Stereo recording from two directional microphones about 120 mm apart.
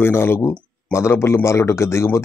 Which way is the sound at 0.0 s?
20° left (ahead or behind).